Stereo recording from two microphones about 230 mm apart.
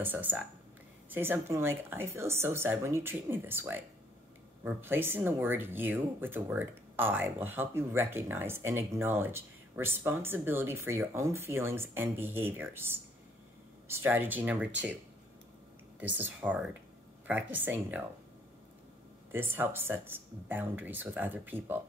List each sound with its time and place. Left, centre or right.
0.0 s speech: centre
16.0 s speech: centre
19.3 s speech: centre